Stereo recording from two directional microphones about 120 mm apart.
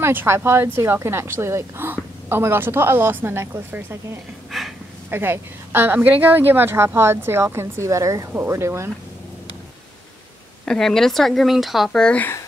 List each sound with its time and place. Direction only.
0.0 s a woman's voice: 20° right (ahead or behind)
4.5 s a sound: centre (ahead or behind)
5.1 s a woman's voice: 20° right (ahead or behind)
10.6 s speech: 5° left (ahead or behind)